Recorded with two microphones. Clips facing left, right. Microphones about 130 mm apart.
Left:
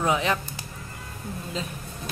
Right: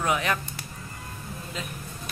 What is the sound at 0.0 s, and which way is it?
Speech, 25° left (ahead or behind).